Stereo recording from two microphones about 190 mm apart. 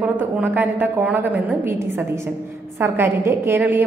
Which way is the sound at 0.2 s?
10° right (ahead or behind).